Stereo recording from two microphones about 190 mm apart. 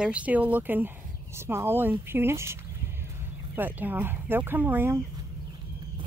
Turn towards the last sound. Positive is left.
turn(degrees=-10)  # may be behind; listen again after turning